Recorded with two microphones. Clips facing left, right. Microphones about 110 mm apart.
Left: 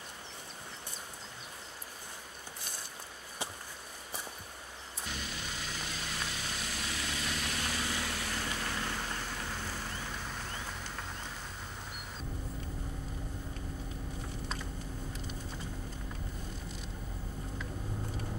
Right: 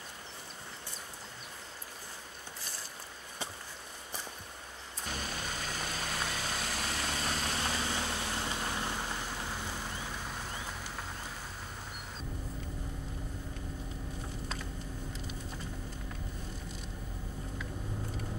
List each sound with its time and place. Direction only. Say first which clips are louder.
5.0 s vehicle: right 3 dB; 45° right (ahead or behind); by 11.1 s 5° right (ahead or behind)